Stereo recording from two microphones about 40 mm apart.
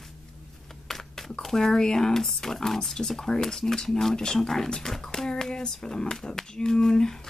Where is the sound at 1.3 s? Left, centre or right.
Centre.